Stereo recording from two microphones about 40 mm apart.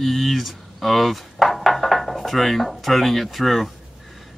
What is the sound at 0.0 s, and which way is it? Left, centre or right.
Speech, centre.